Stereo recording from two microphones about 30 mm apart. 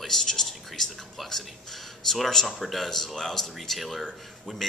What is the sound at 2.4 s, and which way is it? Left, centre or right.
Speech, centre.